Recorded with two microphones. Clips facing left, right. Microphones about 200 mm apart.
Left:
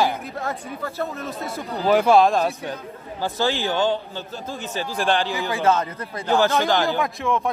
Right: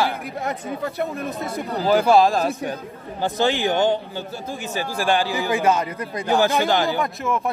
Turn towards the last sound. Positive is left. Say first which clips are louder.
# left 1 dB
turn(degrees=-5)  # may be behind; listen again after turning